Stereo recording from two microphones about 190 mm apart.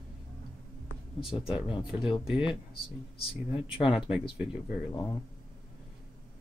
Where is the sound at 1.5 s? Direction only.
25° left (ahead or behind).